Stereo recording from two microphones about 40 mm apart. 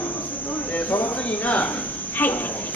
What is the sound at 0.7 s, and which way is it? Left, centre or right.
Cricket, left.